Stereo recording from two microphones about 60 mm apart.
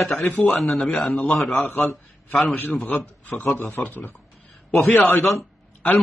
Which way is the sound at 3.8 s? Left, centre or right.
Left.